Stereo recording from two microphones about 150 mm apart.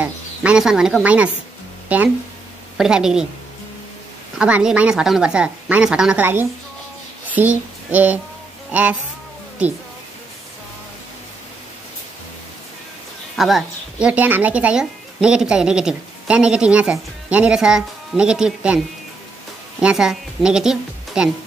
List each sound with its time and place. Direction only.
0.0 s a woman's voice: 5° right (ahead or behind)
4.4 s a woman's voice: 5° right (ahead or behind)
7.3 s a sound: 10° right (ahead or behind)
13.4 s a woman's voice: centre (ahead or behind)